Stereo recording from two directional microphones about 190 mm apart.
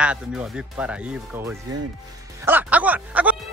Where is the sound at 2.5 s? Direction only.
10° right (ahead or behind).